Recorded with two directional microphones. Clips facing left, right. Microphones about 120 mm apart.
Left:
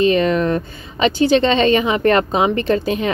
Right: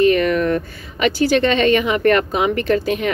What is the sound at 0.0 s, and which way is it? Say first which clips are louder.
A woman's voice: even; 25° left (ahead or behind).